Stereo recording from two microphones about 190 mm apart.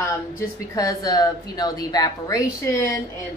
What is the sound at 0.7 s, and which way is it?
A woman's voice, 15° left (ahead or behind).